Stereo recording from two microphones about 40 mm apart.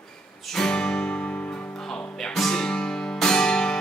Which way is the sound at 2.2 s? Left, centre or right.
Centre.